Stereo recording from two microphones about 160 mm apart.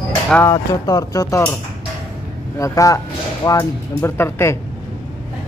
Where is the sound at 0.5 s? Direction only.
25° left (ahead or behind).